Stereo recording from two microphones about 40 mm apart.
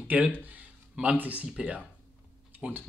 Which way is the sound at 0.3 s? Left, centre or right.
Right.